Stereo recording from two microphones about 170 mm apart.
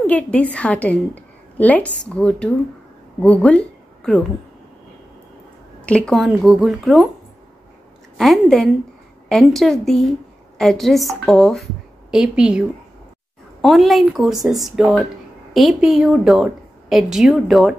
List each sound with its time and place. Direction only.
0.0 s a woman's voice: 10° left (ahead or behind)
5.8 s a woman's voice: 5° left (ahead or behind)
8.2 s a woman's voice: centre (ahead or behind)